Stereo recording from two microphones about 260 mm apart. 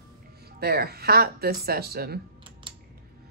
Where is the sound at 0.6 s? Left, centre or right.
Right.